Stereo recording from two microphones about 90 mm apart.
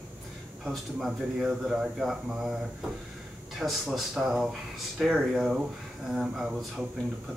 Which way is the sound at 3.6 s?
5° right (ahead or behind).